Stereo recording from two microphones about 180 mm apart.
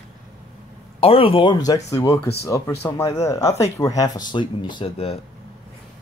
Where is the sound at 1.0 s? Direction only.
30° left (ahead or behind).